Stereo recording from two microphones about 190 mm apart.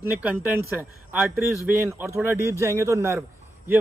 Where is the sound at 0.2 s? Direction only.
10° right (ahead or behind).